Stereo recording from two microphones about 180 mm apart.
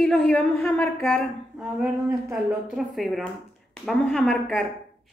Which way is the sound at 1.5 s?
5° right (ahead or behind).